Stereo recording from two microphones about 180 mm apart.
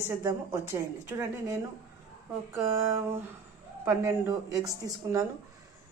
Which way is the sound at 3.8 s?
15° right (ahead or behind).